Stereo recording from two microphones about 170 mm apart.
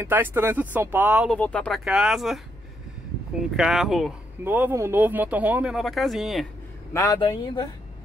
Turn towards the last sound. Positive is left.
turn(degrees=30)  # may be behind; listen again after turning